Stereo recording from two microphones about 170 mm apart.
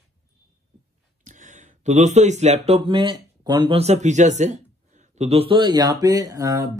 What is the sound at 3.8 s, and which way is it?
Speech, 40° right (ahead or behind).